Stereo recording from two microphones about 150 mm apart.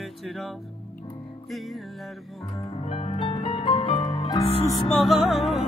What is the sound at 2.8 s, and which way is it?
Music, 45° left (ahead or behind).